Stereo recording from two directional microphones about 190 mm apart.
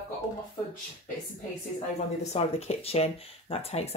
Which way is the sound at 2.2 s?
35° left (ahead or behind).